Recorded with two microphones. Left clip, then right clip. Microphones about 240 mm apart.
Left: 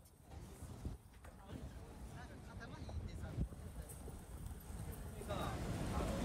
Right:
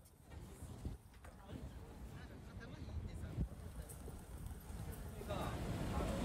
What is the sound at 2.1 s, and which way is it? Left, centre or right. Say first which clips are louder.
Vehicle: left 2 dB; centre.